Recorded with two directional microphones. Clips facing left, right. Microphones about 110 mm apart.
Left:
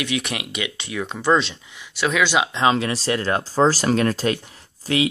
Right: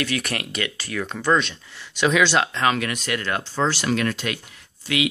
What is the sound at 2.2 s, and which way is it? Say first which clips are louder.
Speech: even; 10° left (ahead or behind).